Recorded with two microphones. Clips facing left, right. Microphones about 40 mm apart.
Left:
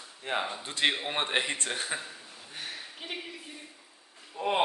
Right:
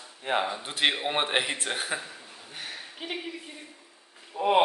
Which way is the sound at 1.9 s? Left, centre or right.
Centre.